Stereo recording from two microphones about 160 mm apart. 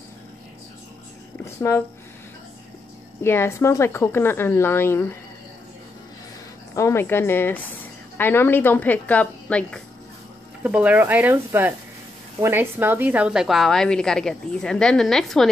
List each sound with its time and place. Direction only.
1.4 s a sound: 15° left (ahead or behind)
3.2 s a woman's voice: 15° left (ahead or behind)
6.7 s a woman's voice: 15° left (ahead or behind)
10.6 s a woman's voice: 10° right (ahead or behind)